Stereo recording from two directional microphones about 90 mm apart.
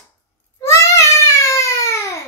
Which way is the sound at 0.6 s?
30° left (ahead or behind).